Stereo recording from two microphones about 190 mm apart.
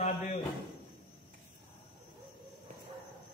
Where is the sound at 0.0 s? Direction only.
35° left (ahead or behind).